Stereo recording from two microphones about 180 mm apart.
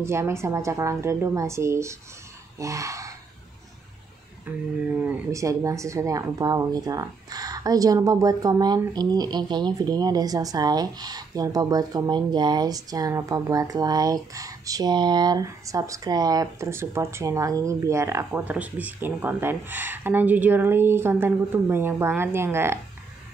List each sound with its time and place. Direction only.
0.0 s speech: 15° right (ahead or behind)
5.0 s speech: 15° right (ahead or behind)